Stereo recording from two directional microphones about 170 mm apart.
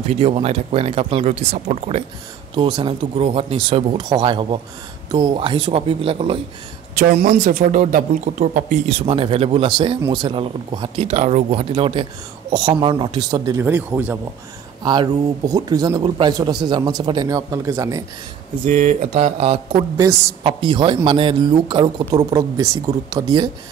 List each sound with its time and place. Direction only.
0.1 s a man's voice: 35° right (ahead or behind)
7.2 s speech: 50° right (ahead or behind)
8.8 s a man's voice: 35° right (ahead or behind)
13.7 s speech: 10° right (ahead or behind)
14.8 s speech: 25° right (ahead or behind)
18.7 s a man's voice: 45° right (ahead or behind); by 23.5 s 25° right (ahead or behind)